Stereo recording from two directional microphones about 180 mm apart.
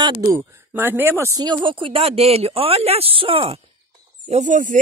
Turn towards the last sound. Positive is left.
turn(degrees=-45)  # may be behind; listen again after turning